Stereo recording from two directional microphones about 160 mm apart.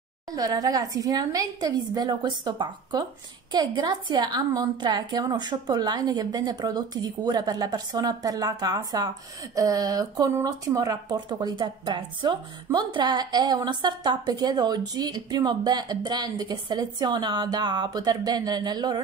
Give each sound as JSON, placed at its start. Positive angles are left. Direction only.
{"t": 0.4, "sound": "speech", "side_deg": -25}